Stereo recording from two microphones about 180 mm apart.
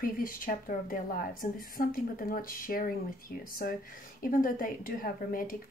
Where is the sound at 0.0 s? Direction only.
50° left (ahead or behind).